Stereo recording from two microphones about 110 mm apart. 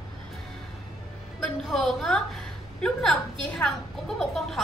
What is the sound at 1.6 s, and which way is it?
A woman's voice, centre (ahead or behind).